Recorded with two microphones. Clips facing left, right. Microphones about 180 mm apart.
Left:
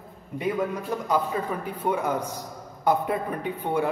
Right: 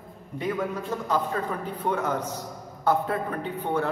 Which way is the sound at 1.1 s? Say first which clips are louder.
Left 1 dB; 10° left (ahead or behind).